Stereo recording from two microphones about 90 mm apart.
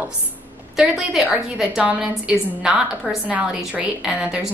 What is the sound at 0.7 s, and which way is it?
A woman's voice, 5° right (ahead or behind).